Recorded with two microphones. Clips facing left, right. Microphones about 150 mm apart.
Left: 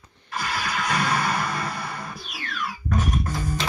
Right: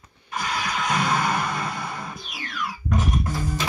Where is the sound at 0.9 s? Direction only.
20° right (ahead or behind).